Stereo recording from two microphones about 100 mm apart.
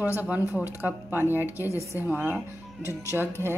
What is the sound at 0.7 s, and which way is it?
Speech, 20° right (ahead or behind).